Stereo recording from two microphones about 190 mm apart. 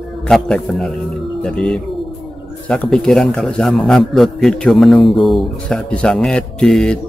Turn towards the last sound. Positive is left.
turn(degrees=5)  # may be behind; listen again after turning